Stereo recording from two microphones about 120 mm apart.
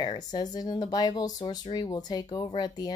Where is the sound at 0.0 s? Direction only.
35° left (ahead or behind).